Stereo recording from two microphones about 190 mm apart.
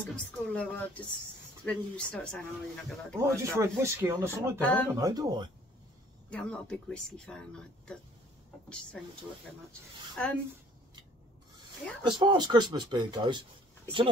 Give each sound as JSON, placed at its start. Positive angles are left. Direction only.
{"t": 0.0, "sound": "speech", "side_deg": 5}
{"t": 3.2, "sound": "speech", "side_deg": -15}
{"t": 4.6, "sound": "speech", "side_deg": 5}
{"t": 4.9, "sound": "speech", "side_deg": -20}
{"t": 6.3, "sound": "speech", "side_deg": 5}
{"t": 9.7, "sound": "speech", "side_deg": 5}
{"t": 12.0, "sound": "speech", "side_deg": -25}